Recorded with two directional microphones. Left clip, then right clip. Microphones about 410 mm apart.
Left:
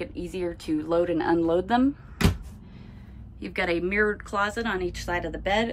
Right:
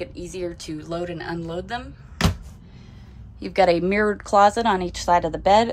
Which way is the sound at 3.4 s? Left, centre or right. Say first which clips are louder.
Right 8 dB; centre.